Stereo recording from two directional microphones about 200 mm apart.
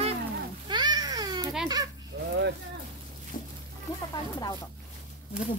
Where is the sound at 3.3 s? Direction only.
40° left (ahead or behind).